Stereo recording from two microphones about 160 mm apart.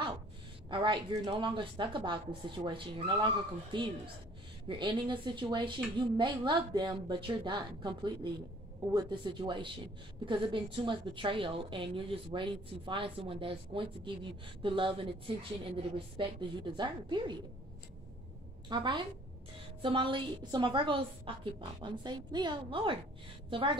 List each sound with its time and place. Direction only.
0.7 s a woman's voice: 30° right (ahead or behind)
18.7 s a woman's voice: 30° right (ahead or behind)